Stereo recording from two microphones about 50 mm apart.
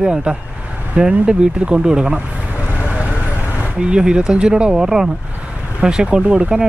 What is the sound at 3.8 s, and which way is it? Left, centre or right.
Speech, centre.